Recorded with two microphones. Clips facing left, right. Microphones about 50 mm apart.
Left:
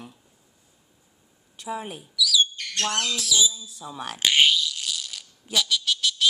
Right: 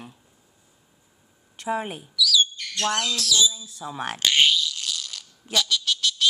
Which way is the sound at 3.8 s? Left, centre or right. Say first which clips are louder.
Right 4 dB; right.